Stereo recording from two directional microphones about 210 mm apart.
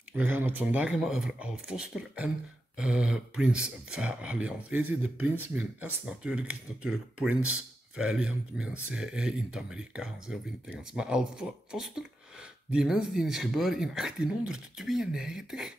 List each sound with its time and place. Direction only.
0.1 s speech: 10° right (ahead or behind)